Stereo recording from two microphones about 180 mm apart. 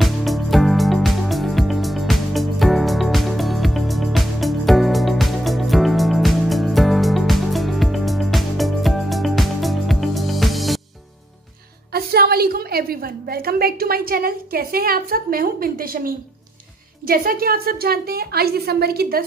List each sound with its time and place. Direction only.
0.0 s music: centre (ahead or behind)
11.9 s a woman's voice: 60° right (ahead or behind)